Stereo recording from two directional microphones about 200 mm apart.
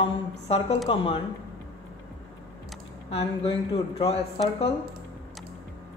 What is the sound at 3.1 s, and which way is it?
Speech, 30° left (ahead or behind).